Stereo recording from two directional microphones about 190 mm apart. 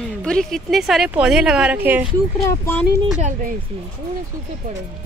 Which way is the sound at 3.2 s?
40° right (ahead or behind).